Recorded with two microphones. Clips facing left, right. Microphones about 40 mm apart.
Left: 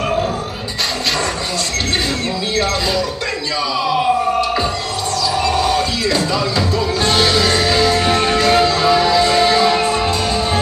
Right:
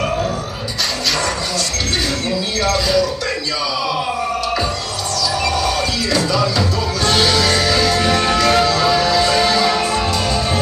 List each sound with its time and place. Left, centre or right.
2.5 s speech: left
5.4 s music: left